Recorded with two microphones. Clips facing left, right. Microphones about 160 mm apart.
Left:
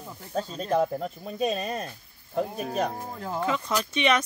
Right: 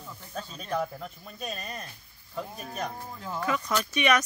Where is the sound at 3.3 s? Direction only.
25° left (ahead or behind).